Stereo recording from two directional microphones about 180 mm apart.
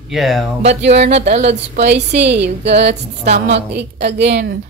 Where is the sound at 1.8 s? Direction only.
70° right (ahead or behind).